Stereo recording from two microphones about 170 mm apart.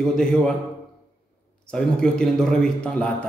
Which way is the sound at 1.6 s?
5° left (ahead or behind).